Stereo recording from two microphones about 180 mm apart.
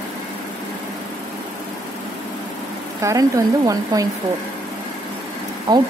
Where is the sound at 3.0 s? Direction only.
20° right (ahead or behind).